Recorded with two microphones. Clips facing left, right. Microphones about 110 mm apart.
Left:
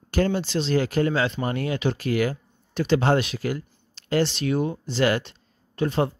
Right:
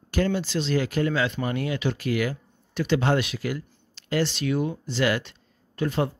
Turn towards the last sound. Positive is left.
turn(degrees=30)  # may be behind; listen again after turning